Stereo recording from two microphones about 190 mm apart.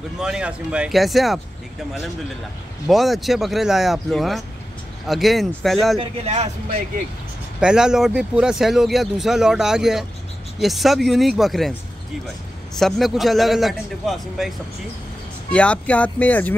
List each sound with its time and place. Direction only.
0.2 s speech: 5° right (ahead or behind)
2.9 s speech: centre (ahead or behind)
5.9 s speech: 35° right (ahead or behind)
7.6 s speech: 5° right (ahead or behind)
12.7 s speech: centre (ahead or behind)
15.5 s speech: 5° left (ahead or behind)